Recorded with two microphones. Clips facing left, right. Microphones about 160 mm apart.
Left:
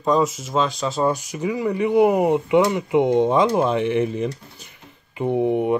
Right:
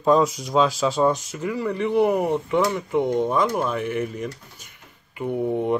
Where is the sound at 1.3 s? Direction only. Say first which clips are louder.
Left 3 dB; 15° left (ahead or behind).